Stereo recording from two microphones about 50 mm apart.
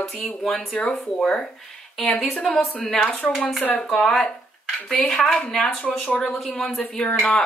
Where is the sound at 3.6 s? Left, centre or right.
Left.